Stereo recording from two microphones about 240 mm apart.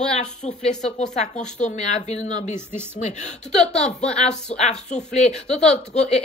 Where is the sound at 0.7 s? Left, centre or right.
Left.